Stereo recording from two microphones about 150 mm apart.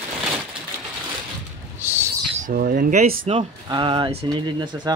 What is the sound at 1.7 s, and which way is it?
Owl, 15° right (ahead or behind).